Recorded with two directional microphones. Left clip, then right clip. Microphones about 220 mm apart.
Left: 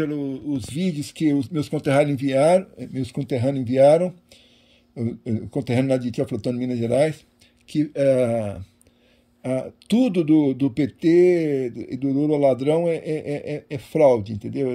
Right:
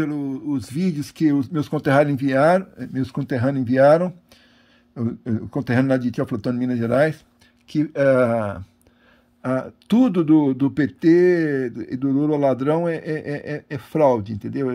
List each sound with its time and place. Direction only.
0.0 s a man's voice: centre (ahead or behind)
0.9 s speech: 20° right (ahead or behind)